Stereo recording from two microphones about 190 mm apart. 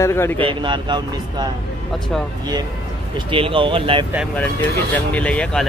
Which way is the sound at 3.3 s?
25° right (ahead or behind).